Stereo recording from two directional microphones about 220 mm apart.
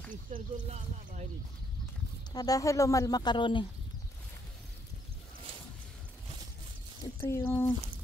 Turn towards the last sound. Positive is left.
turn(degrees=10)  # may be behind; listen again after turning